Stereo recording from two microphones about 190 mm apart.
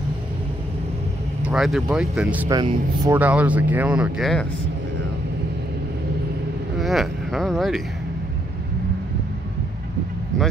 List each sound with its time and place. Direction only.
1.4 s speech: centre (ahead or behind)
2.5 s speech: 20° right (ahead or behind)
3.2 s speech: 5° right (ahead or behind)
6.8 s speech: centre (ahead or behind)